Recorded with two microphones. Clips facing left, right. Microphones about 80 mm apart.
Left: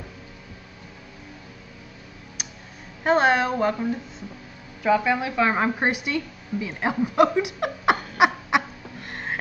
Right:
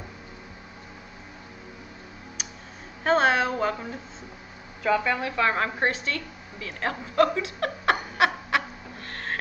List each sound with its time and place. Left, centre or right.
2.4 s a sound: centre
3.0 s a woman's voice: centre
4.8 s a woman's voice: centre